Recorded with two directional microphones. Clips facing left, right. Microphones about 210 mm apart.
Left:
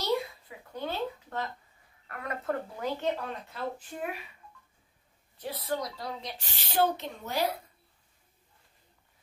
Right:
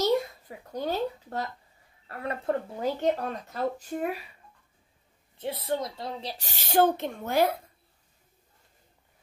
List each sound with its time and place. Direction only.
0.0 s a sound: 40° right (ahead or behind)
2.0 s a woman's voice: 30° right (ahead or behind)
2.8 s speech: 40° right (ahead or behind)
5.4 s a woman's voice: 25° right (ahead or behind)
6.3 s speech: 45° right (ahead or behind)